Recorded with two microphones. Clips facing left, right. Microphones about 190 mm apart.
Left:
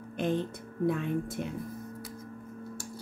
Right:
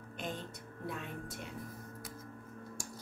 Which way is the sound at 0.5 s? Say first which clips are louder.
Left 13 dB; 50° left (ahead or behind).